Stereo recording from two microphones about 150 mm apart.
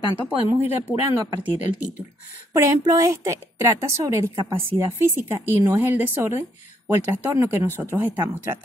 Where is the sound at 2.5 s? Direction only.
20° right (ahead or behind).